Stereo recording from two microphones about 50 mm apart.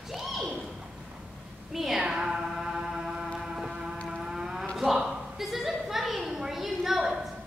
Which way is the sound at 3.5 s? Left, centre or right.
Centre.